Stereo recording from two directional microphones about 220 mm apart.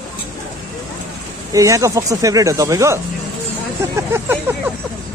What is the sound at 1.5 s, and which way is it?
Speech, 15° right (ahead or behind).